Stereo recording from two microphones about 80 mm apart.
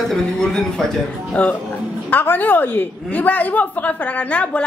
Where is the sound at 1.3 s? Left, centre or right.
Centre.